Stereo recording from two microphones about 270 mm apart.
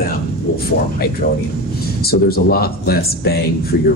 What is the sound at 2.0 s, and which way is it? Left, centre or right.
Speech, left.